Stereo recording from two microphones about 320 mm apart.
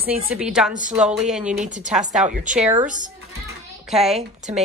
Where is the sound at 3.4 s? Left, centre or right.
Centre.